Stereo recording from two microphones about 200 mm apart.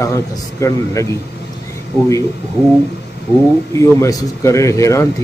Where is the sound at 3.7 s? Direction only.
15° left (ahead or behind).